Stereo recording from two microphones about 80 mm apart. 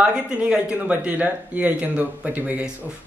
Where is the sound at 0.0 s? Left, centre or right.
Centre.